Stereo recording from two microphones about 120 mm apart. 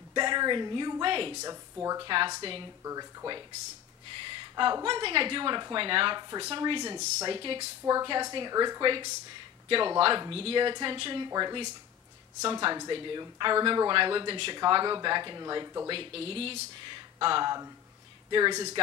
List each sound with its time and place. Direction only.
0.1 s speech: 40° right (ahead or behind)
1.4 s speech: 30° right (ahead or behind)
2.0 s speech: 45° right (ahead or behind)
2.8 s speech: 30° right (ahead or behind)
4.2 s a sound: 45° right (ahead or behind)
4.8 s speech: 45° right (ahead or behind)
7.8 s speech: 30° right (ahead or behind)
15.9 s speech: 50° right (ahead or behind); by 18.7 s 35° right (ahead or behind)